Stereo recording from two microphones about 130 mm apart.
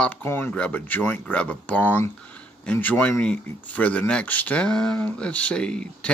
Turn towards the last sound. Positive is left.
turn(degrees=5)  # may be behind; listen again after turning